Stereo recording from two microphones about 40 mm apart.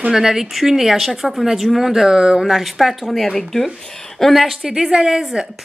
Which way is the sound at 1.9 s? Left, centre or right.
Centre.